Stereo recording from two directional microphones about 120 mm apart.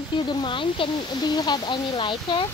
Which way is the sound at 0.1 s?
40° left (ahead or behind).